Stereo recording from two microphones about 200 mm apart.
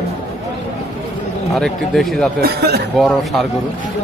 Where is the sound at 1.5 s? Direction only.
Centre (ahead or behind).